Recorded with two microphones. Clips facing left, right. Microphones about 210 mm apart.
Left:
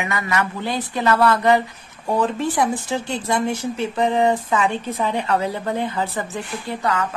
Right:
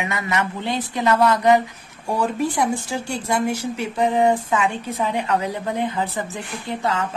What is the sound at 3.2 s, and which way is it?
A woman's voice, 10° right (ahead or behind).